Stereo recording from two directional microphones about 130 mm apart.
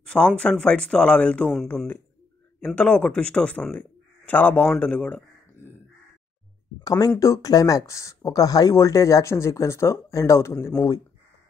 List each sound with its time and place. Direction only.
0.0 s a sound: 5° left (ahead or behind)
0.4 s speech: 10° left (ahead or behind)
6.8 s speech: 30° left (ahead or behind)